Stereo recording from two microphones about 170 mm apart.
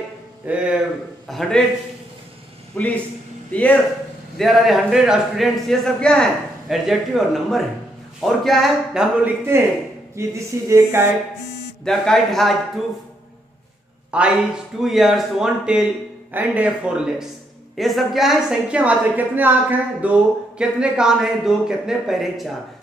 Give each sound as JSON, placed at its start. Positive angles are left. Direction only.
{"t": 0.5, "sound": "a sound", "side_deg": -10}
{"t": 1.2, "sound": "a man's voice", "side_deg": 0}
{"t": 2.8, "sound": "a man's voice", "side_deg": 10}
{"t": 9.5, "sound": "a sound", "side_deg": -15}
{"t": 11.8, "sound": "a man's voice", "side_deg": 5}
{"t": 14.1, "sound": "a man's voice", "side_deg": -5}